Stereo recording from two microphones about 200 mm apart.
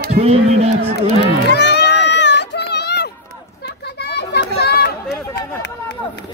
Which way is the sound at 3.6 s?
55° left (ahead or behind).